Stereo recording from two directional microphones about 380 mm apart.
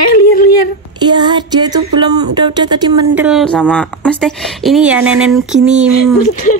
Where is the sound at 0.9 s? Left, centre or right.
Centre.